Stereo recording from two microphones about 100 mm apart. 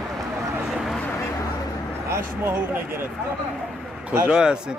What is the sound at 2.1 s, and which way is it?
Speech, 20° right (ahead or behind).